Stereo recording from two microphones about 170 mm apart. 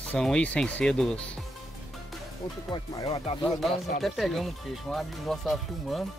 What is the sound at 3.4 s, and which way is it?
Speech, centre (ahead or behind).